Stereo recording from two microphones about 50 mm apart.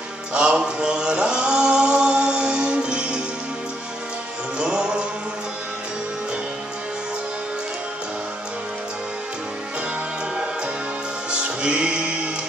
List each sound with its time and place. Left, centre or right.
0.3 s chant: centre
4.6 s music: centre
11.2 s music: right